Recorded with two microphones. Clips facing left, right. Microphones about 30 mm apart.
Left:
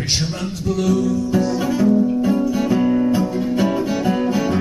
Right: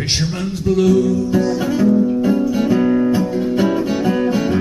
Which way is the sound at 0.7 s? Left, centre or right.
Right.